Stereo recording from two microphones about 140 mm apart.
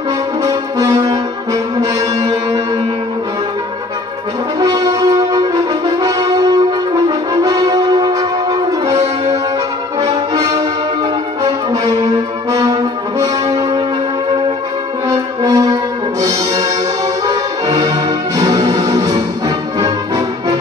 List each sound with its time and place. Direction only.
0.5 s brass instrument: 30° right (ahead or behind)
4.6 s brass instrument: 30° right (ahead or behind)
15.0 s brass instrument: 30° right (ahead or behind)
17.3 s music: 30° right (ahead or behind)